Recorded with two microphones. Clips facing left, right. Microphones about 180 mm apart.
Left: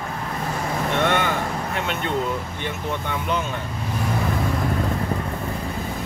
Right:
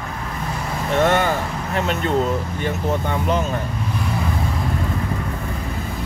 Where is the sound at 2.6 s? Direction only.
40° right (ahead or behind).